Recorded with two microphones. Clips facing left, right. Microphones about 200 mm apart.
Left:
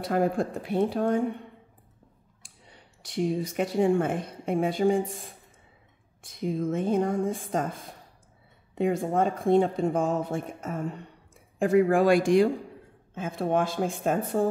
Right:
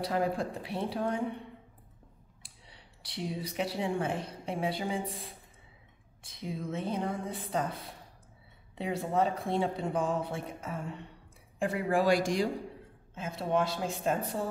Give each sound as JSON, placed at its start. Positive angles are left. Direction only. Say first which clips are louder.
{"t": 0.0, "sound": "speech", "louder": "left 5 dB", "side_deg": 50}
{"t": 2.4, "sound": "speech", "louder": "left 4 dB", "side_deg": 45}
{"t": 6.3, "sound": "speech", "louder": "left 9 dB", "side_deg": 50}